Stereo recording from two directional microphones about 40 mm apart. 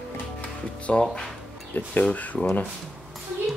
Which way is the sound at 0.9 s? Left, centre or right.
Left.